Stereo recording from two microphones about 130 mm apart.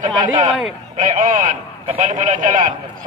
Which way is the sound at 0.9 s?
80° right.